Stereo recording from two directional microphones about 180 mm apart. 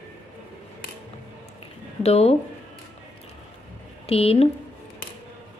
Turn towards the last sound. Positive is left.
turn(degrees=35)  # may be behind; listen again after turning